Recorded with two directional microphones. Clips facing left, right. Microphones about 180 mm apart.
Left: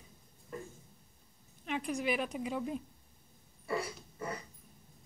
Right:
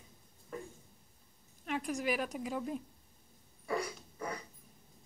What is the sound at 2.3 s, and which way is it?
Speech, centre (ahead or behind).